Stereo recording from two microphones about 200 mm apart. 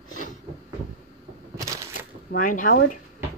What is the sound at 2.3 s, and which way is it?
Speech, 40° left (ahead or behind).